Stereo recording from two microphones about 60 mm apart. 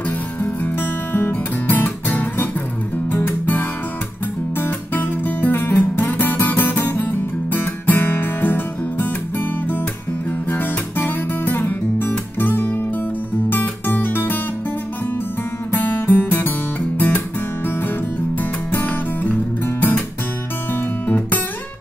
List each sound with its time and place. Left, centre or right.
1.1 s guitar: left
13.5 s music: left
15.7 s music: left
18.4 s music: left